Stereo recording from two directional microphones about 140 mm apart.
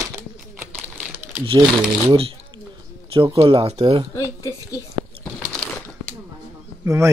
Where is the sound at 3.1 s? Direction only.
40° right (ahead or behind).